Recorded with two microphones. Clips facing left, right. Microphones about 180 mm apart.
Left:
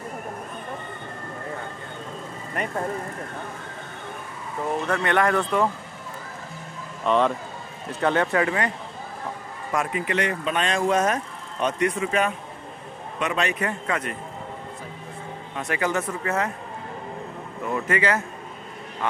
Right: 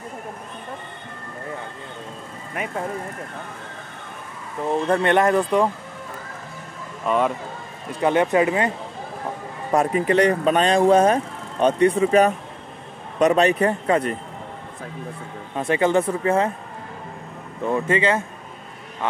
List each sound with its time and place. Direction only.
2.6 s speech: 5° right (ahead or behind)
4.8 s speech: 25° right (ahead or behind)
7.1 s speech: 5° right (ahead or behind)
9.7 s speech: 35° right (ahead or behind)
15.5 s speech: 30° right (ahead or behind)
17.6 s speech: 25° right (ahead or behind)